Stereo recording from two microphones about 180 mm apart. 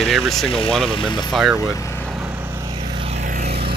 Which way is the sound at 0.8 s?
30° left (ahead or behind).